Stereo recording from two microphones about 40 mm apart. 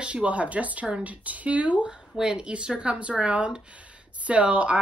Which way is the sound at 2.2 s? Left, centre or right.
Right.